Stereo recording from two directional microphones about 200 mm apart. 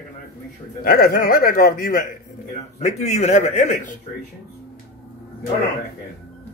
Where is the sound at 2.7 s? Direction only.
35° left (ahead or behind).